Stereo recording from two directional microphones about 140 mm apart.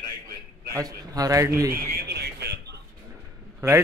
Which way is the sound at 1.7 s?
90° right.